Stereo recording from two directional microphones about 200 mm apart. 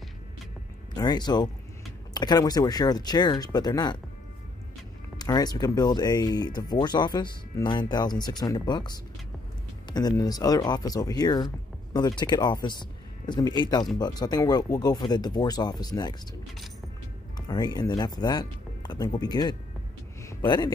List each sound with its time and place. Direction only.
0.9 s speech: 20° left (ahead or behind)
5.2 s speech: 20° left (ahead or behind)
17.5 s speech: 20° left (ahead or behind)
20.2 s a sound: 20° left (ahead or behind)